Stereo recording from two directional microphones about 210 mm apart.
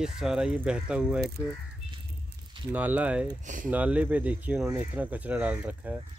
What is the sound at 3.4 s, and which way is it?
Speech, 40° right (ahead or behind).